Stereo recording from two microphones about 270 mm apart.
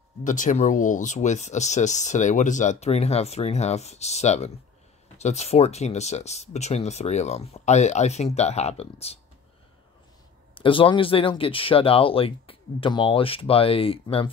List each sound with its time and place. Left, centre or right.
0.2 s speech: left
10.5 s speech: centre